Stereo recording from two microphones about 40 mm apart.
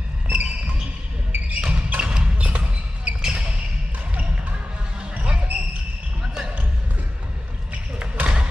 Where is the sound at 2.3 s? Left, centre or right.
Right.